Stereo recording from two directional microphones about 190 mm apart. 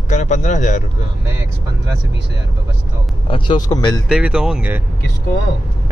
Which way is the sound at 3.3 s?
25° left (ahead or behind).